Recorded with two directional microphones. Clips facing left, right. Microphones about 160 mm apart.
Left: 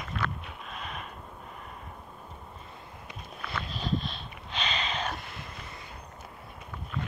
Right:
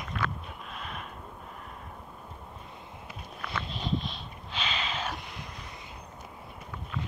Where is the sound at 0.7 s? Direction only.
Centre (ahead or behind).